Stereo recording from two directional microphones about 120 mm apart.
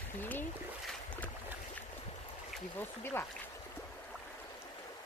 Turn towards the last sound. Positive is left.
turn(degrees=20)  # may be behind; listen again after turning